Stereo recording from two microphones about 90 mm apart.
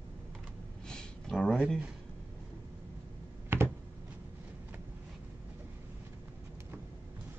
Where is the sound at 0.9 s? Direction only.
5° left (ahead or behind).